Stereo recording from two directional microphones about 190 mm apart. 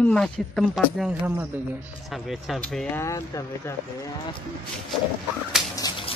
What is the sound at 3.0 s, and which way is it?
Speech, 15° left (ahead or behind).